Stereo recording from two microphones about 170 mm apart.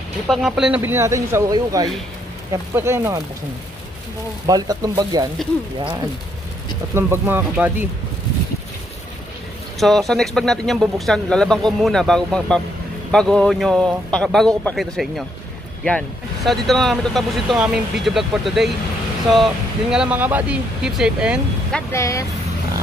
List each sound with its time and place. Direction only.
0.3 s speech: 5° right (ahead or behind)
4.5 s speech: 20° right (ahead or behind)
7.0 s speech: 15° right (ahead or behind)
9.8 s speech: centre (ahead or behind)
16.4 s speech: centre (ahead or behind)
21.9 s speech: 20° left (ahead or behind)